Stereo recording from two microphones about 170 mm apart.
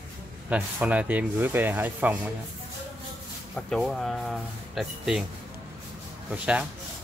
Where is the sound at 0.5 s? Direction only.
10° right (ahead or behind).